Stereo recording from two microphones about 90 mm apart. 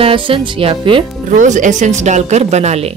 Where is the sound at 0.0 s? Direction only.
75° right (ahead or behind).